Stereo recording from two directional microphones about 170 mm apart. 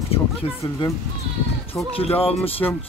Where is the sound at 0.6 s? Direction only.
20° left (ahead or behind).